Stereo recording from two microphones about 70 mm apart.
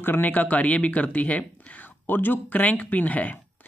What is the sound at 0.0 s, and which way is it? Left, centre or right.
Speech, left.